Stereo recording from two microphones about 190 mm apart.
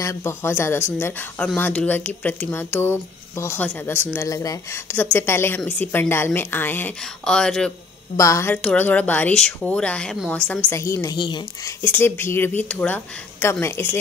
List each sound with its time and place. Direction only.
0.0 s speech: 15° left (ahead or behind)
8.2 s speech: 15° left (ahead or behind)
10.7 s speech: 15° left (ahead or behind)